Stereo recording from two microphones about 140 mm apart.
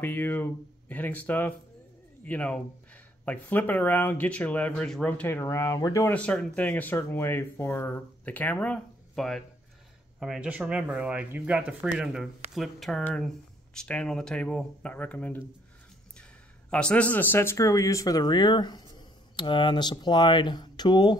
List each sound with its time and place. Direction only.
0.0 s speech: 15° left (ahead or behind)
6.1 s speech: 5° left (ahead or behind)
16.7 s speech: 10° left (ahead or behind); by 21.2 s 30° left (ahead or behind)